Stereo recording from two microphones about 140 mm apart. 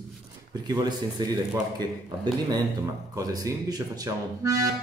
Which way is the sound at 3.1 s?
25° right (ahead or behind).